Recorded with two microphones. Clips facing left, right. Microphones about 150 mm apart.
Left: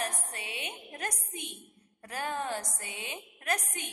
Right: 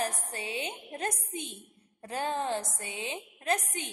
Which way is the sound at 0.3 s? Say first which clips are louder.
Right 5 dB; 30° right (ahead or behind).